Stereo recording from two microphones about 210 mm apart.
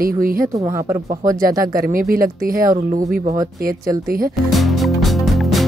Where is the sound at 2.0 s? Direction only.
45° right (ahead or behind).